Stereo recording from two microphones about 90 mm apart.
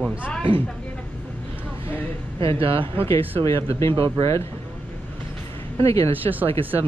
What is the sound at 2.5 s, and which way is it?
Speech, 85° right.